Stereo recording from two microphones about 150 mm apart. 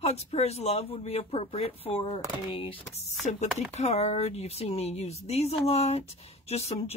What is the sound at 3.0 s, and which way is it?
Speech, 50° left (ahead or behind).